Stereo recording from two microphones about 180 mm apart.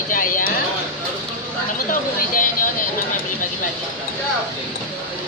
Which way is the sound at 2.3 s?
50° left (ahead or behind).